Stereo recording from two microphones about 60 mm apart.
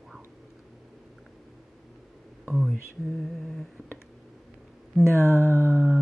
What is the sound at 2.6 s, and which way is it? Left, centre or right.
Mantra, centre.